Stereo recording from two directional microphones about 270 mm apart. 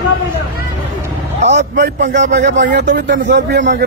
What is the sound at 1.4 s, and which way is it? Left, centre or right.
A man's voice, right.